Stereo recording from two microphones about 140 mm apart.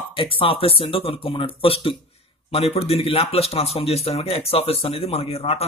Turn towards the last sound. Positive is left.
turn(degrees=45)  # may be behind; listen again after turning